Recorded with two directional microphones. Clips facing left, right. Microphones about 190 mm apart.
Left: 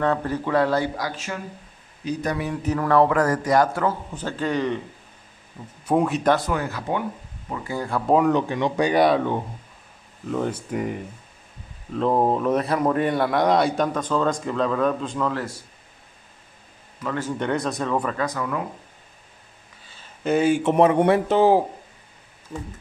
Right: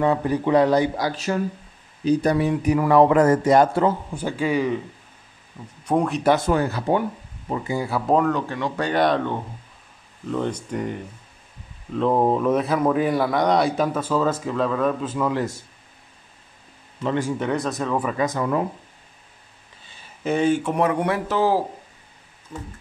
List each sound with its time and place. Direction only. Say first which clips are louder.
0.0 s a man's voice: right 3 dB; 15° right (ahead or behind)
1.0 s speech: right 7 dB; 35° right (ahead or behind)
2.6 s speech: right 1 dB; 15° right (ahead or behind)
4.1 s a man's voice: right 2 dB; 10° right (ahead or behind)
5.9 s speech: left 1 dB; centre (ahead or behind)
6.4 s speech: right 5 dB; 30° right (ahead or behind)
7.6 s a man's voice: right 1 dB; 10° right (ahead or behind)
8.3 s speech: left 3 dB; 20° left (ahead or behind); by 15.6 s 20° right (ahead or behind)
17.2 s speech: left 3 dB; 5° right (ahead or behind)
18.2 s speech: right 4 dB; 25° right (ahead or behind)
20.2 s speech: left 1 dB; 5° left (ahead or behind)
20.6 s speech: left 5 dB; 25° left (ahead or behind)